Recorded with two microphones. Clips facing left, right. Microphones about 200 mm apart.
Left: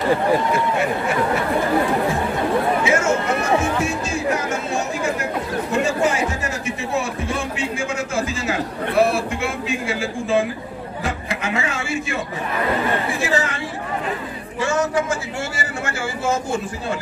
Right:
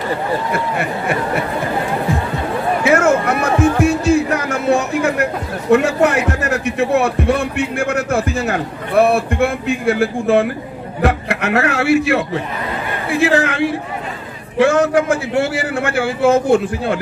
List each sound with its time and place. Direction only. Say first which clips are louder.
0.5 s a man's voice: even; 60° right (ahead or behind)
2.8 s music: right 5 dB; 60° right (ahead or behind)
11.0 s a man's voice: right 9 dB; 65° right (ahead or behind)